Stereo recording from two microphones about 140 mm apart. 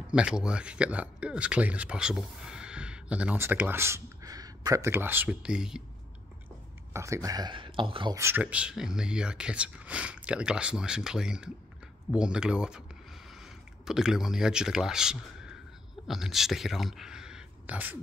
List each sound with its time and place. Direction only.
0.1 s speech: 5° right (ahead or behind)
6.9 s speech: 20° right (ahead or behind); by 8.1 s 35° right (ahead or behind)
8.1 s speech: 20° right (ahead or behind)